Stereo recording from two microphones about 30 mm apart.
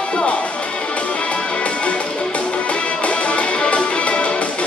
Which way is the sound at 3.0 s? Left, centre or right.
Left.